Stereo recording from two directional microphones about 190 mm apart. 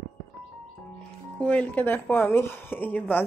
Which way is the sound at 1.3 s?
5° left (ahead or behind).